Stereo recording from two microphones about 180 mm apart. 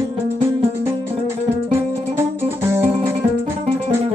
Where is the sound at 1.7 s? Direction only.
15° right (ahead or behind).